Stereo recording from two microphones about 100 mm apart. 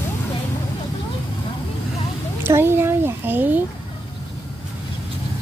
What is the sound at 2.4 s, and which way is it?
A child's voice, 25° right (ahead or behind).